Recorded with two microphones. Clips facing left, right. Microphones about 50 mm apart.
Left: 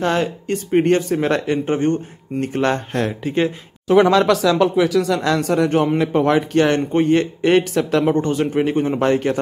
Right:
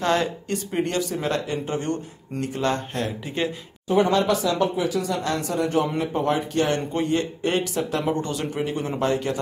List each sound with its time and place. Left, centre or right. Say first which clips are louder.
0.0 s speech: left 3 dB; left
2.4 s speech: left 5 dB; left
3.3 s speech: left 9 dB; left
3.8 s speech: left 7 dB; left
8.0 s speech: left 8 dB; left
9.0 s speech: left 4 dB; left